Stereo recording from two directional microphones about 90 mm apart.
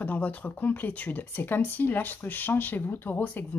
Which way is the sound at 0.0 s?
15° left (ahead or behind).